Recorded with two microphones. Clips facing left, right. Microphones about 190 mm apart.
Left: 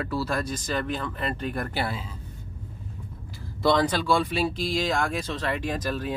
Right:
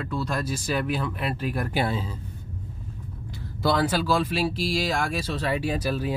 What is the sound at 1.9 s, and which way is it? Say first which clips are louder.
Speech: right 5 dB; 30° right (ahead or behind).